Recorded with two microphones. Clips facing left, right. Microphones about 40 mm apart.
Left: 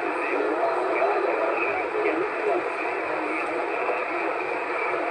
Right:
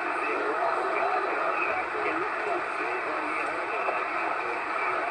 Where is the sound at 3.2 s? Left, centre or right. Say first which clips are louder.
Left 3 dB; centre.